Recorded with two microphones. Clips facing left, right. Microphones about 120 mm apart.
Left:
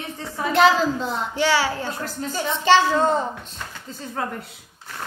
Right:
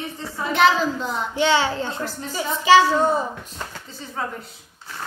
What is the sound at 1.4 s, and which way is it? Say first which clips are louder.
Speech: right 2 dB; 20° right (ahead or behind).